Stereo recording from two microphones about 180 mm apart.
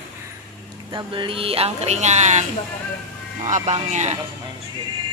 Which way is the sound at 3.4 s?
40° right (ahead or behind).